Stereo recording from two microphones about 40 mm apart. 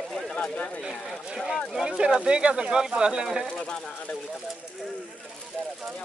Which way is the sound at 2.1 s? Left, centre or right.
Right.